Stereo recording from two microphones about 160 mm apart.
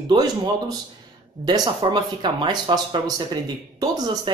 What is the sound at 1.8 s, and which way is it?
Speech, 30° right (ahead or behind).